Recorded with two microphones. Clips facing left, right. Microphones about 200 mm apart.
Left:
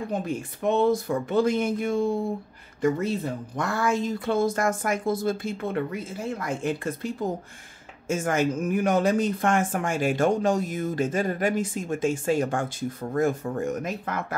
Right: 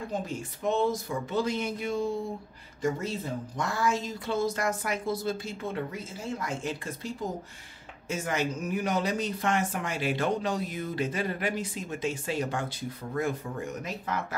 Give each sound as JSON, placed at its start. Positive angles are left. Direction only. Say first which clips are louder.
{"t": 0.1, "sound": "speech", "louder": "left 4 dB", "side_deg": 60}
{"t": 8.1, "sound": "speech", "louder": "left 6 dB", "side_deg": 50}